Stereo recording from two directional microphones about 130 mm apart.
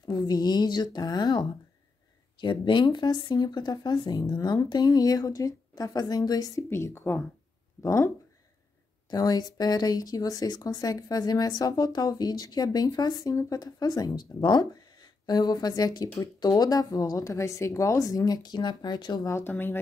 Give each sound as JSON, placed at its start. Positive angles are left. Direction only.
{"t": 0.1, "sound": "speech", "side_deg": 30}
{"t": 9.1, "sound": "speech", "side_deg": 30}
{"t": 19.2, "sound": "speech", "side_deg": 15}